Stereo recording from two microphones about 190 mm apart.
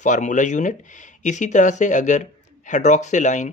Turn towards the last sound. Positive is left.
turn(degrees=40)  # may be behind; listen again after turning